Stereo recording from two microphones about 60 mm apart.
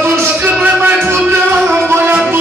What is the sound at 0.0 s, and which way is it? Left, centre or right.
Music, right.